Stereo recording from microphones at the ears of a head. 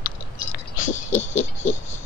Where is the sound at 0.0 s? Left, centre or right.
Left.